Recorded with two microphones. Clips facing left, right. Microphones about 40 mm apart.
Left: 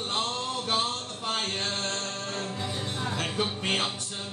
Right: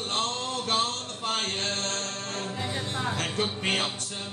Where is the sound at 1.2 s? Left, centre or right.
Right.